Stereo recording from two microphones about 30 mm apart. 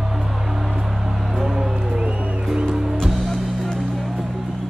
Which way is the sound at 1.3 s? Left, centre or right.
Centre.